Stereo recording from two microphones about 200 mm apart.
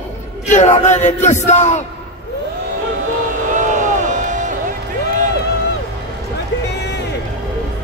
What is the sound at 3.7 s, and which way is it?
Music, 40° right (ahead or behind).